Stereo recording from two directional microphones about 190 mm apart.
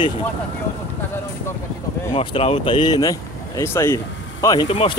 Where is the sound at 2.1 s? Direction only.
30° left (ahead or behind).